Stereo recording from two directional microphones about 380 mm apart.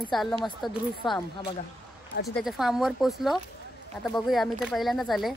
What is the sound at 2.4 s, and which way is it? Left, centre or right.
A woman's voice, centre.